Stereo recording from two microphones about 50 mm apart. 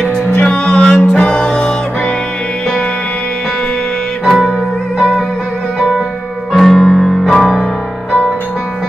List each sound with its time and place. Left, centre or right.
0.3 s music: left
0.8 s music: centre
4.3 s music: centre
4.9 s music: centre
5.8 s music: centre
6.5 s music: centre